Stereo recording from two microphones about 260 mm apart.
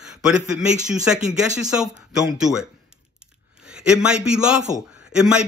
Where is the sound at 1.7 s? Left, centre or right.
Centre.